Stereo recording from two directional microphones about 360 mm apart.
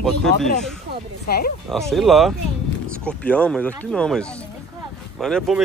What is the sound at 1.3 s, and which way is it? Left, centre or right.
Speech, left.